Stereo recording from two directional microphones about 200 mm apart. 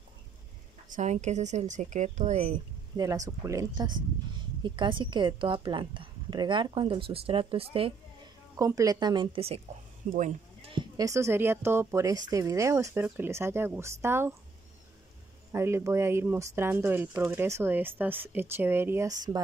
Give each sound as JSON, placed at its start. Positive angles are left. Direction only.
{"t": 0.8, "sound": "speech", "side_deg": -35}
{"t": 2.9, "sound": "speech", "side_deg": -20}
{"t": 8.5, "sound": "speech", "side_deg": -15}
{"t": 10.7, "sound": "speech", "side_deg": -20}
{"t": 15.5, "sound": "speech", "side_deg": -15}